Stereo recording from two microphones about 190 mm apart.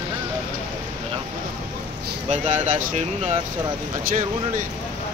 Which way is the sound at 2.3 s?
40° right (ahead or behind).